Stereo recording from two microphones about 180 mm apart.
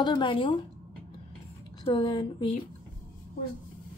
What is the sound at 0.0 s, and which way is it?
Speech, 25° left (ahead or behind).